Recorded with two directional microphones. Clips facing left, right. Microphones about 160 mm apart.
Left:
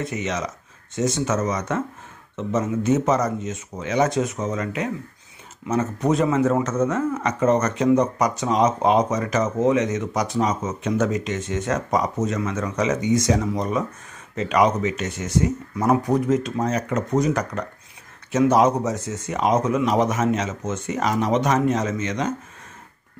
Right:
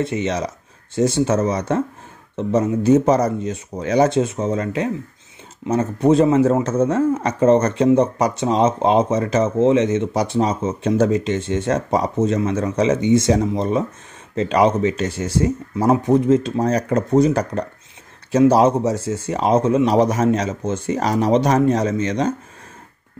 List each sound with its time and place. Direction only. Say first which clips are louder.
0.0 s speech: right 5 dB; 30° right (ahead or behind)